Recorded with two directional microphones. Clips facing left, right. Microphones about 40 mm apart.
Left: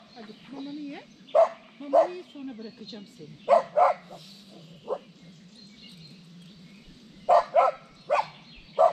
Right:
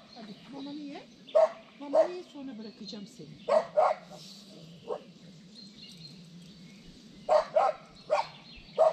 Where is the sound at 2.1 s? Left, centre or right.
Left.